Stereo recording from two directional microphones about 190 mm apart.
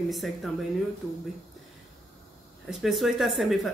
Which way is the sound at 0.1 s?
Centre (ahead or behind).